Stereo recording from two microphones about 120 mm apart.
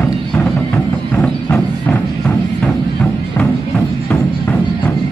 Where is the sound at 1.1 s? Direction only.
15° left (ahead or behind).